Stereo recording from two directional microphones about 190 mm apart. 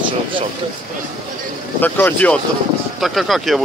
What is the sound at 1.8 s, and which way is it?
Speech, 10° left (ahead or behind).